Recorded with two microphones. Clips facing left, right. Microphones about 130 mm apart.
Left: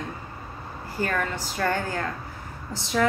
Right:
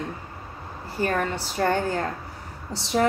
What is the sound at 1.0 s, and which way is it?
A woman's voice, 30° right (ahead or behind).